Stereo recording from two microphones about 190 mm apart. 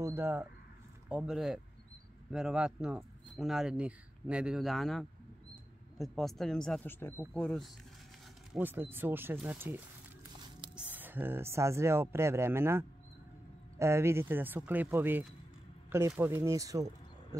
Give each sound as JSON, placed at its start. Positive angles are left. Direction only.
{"t": 0.0, "sound": "speech", "side_deg": -10}
{"t": 8.5, "sound": "speech", "side_deg": -10}
{"t": 10.8, "sound": "speech", "side_deg": -10}